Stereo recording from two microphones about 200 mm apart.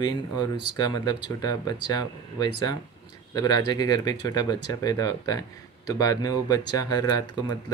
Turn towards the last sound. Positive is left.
turn(degrees=20)  # may be behind; listen again after turning